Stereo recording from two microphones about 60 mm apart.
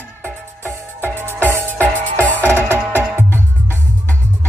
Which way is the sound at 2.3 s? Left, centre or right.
Left.